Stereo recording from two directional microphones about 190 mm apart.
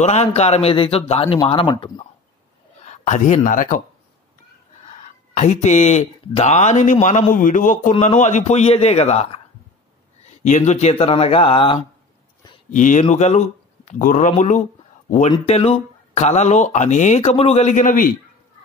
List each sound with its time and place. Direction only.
0.0 s a man's voice: 35° left (ahead or behind)
4.8 s speech: 40° left (ahead or behind)
12.7 s speech: 45° left (ahead or behind)